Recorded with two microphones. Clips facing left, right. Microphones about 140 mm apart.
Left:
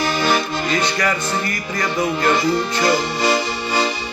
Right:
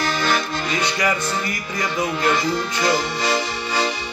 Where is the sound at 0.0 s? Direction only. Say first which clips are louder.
Left 3 dB; 10° left (ahead or behind).